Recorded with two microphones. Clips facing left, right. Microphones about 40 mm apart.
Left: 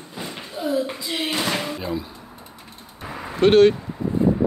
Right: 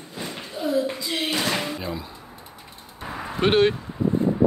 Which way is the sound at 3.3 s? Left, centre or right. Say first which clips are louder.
Left 5 dB; centre.